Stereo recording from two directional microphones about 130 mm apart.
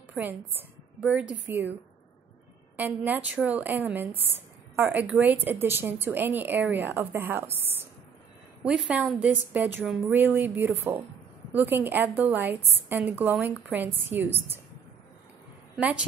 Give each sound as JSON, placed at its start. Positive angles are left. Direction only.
{"t": 0.1, "sound": "a woman's voice", "side_deg": -15}
{"t": 8.6, "sound": "a woman's voice", "side_deg": -5}